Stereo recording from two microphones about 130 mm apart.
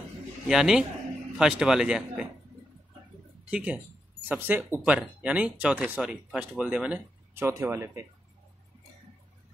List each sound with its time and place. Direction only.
0.5 s speech: 5° right (ahead or behind)
3.4 s speech: 10° right (ahead or behind)
7.4 s speech: 20° right (ahead or behind)